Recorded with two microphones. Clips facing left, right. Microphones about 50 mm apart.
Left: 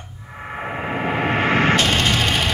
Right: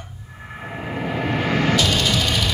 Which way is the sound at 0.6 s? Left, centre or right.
Left.